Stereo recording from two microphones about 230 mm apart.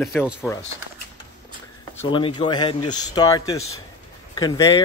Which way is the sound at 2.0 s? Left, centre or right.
Left.